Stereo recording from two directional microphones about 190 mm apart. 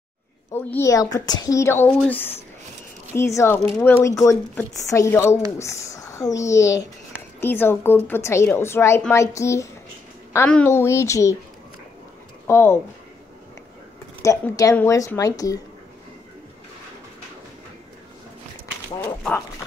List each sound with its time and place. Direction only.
0.5 s speech: 10° left (ahead or behind)
12.4 s speech: 10° left (ahead or behind)
14.2 s speech: 15° left (ahead or behind)